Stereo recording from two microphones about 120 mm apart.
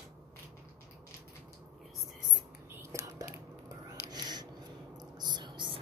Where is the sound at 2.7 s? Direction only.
20° right (ahead or behind).